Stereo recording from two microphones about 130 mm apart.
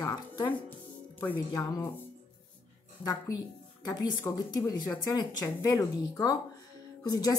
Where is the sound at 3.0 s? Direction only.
30° left (ahead or behind).